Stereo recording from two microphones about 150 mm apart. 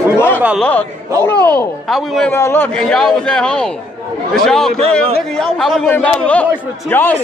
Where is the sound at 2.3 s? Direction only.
15° left (ahead or behind).